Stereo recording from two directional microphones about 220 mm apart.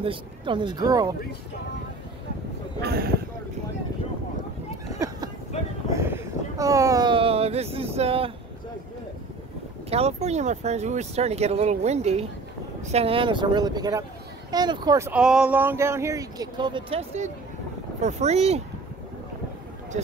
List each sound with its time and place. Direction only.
0.0 s speech: 25° right (ahead or behind)
2.8 s speech: 45° right (ahead or behind)
4.9 s a sound: 15° right (ahead or behind)
9.8 s speech: 30° right (ahead or behind)